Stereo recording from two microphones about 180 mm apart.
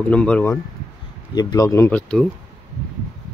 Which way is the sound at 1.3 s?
20° left (ahead or behind).